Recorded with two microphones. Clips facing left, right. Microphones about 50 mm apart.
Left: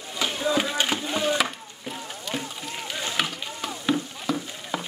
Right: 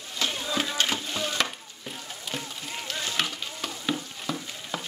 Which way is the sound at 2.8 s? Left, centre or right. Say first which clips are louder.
Left 2 dB; centre.